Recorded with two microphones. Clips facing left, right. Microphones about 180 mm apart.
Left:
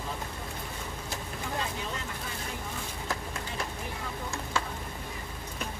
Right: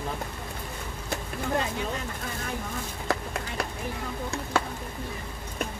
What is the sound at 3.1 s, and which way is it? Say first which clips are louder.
Run: right 7 dB; 70° right (ahead or behind).